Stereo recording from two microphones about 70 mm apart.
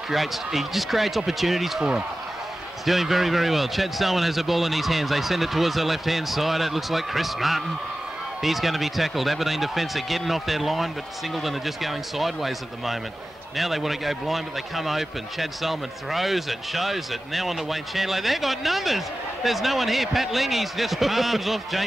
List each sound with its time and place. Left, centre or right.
0.1 s a man's voice: centre